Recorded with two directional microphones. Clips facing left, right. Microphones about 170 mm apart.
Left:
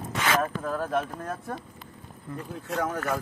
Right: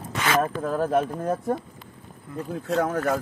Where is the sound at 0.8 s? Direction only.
15° right (ahead or behind).